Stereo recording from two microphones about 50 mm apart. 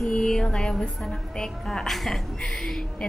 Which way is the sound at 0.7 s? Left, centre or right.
Centre.